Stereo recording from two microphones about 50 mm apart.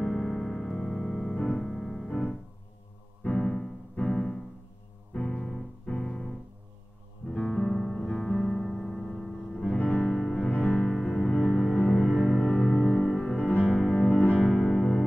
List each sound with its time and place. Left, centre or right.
0.0 s keyboard: centre
3.3 s piano: centre
5.1 s keyboard: centre
7.2 s music: centre
9.8 s music: left
10.1 s music: centre
10.5 s music: centre
13.5 s music: left
13.7 s music: centre